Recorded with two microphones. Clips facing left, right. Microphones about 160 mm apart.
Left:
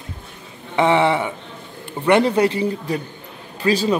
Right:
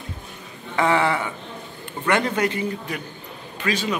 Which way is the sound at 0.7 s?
25° left (ahead or behind).